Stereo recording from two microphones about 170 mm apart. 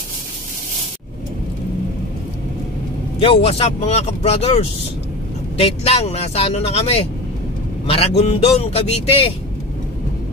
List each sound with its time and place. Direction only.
3.2 s a man's voice: 35° left (ahead or behind)